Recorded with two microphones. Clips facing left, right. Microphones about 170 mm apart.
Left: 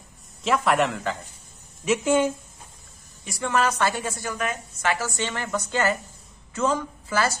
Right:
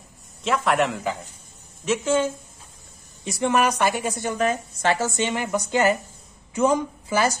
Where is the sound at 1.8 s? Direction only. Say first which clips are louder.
Left 1 dB; 15° left (ahead or behind).